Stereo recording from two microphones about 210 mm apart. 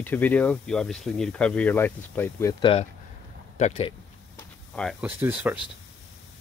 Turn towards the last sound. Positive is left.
turn(degrees=-10)  # may be behind; listen again after turning